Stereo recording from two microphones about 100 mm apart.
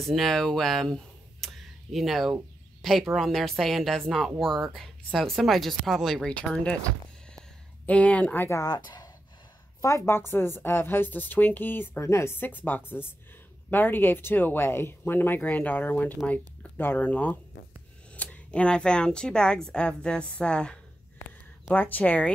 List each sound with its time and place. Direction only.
0.0 s speech: 5° left (ahead or behind)
7.8 s speech: 15° left (ahead or behind)
8.5 s speech: 35° left (ahead or behind)
9.8 s a woman's voice: 30° left (ahead or behind); by 20.7 s 10° left (ahead or behind)
21.7 s speech: 20° left (ahead or behind)